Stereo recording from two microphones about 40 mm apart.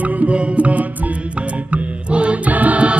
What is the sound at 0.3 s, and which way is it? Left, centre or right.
Music, right.